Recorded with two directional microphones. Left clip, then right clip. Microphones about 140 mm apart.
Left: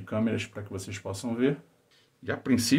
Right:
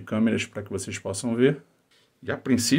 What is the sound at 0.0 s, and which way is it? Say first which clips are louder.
Speech: right 4 dB; 60° right (ahead or behind).